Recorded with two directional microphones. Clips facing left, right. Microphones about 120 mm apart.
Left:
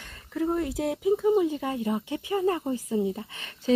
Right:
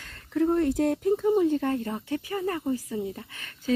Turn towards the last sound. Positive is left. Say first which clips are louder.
# left 3 dB
turn(degrees=25)  # may be behind; listen again after turning